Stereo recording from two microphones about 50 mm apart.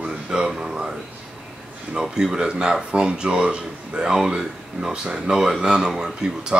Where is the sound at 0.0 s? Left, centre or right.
Centre.